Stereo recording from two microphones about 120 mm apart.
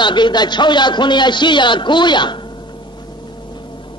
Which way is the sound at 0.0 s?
40° left (ahead or behind).